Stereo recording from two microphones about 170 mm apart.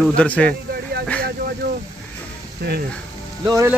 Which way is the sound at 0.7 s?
65° right (ahead or behind).